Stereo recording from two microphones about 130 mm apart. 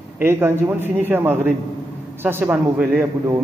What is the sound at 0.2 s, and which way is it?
A man's voice, 20° right (ahead or behind).